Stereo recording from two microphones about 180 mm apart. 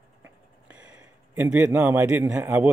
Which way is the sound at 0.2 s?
10° right (ahead or behind).